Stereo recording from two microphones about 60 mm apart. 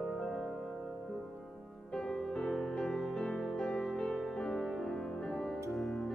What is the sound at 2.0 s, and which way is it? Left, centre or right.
Music, centre.